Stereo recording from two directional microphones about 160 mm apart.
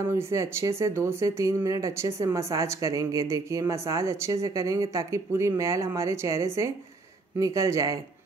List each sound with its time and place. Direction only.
0.0 s speech: 15° right (ahead or behind)